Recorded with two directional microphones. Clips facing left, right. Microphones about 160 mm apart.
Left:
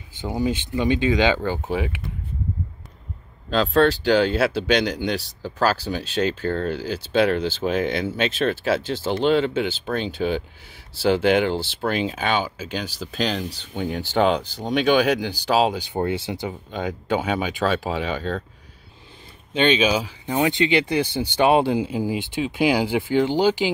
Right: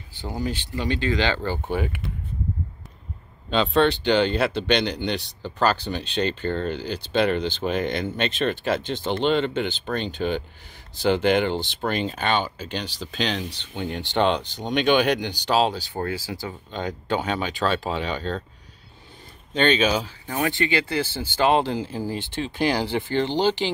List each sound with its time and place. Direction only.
0.2 s speech: 20° left (ahead or behind)
1.4 s speech: centre (ahead or behind)
3.4 s speech: centre (ahead or behind)
15.8 s speech: 20° left (ahead or behind)
16.4 s speech: 5° left (ahead or behind)
19.5 s speech: 10° left (ahead or behind)